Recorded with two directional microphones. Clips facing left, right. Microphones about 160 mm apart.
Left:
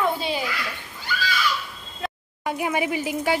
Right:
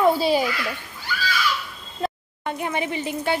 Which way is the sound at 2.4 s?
5° left (ahead or behind).